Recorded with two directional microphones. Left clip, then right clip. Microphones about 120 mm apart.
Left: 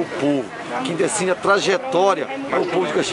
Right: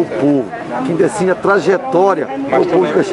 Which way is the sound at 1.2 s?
10° left (ahead or behind).